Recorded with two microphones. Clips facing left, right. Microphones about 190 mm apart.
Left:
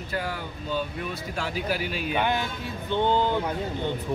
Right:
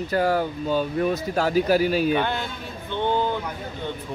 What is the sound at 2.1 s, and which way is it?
Speech, 15° left (ahead or behind).